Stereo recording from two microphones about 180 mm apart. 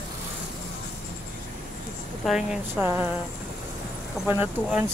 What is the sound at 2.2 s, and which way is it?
Speech, 5° right (ahead or behind).